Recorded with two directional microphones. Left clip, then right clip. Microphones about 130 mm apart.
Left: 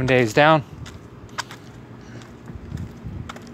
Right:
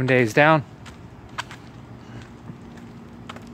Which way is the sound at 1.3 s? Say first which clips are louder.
Left 2 dB; 45° left (ahead or behind).